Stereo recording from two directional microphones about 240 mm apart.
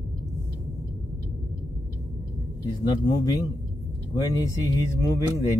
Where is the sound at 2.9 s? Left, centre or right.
Centre.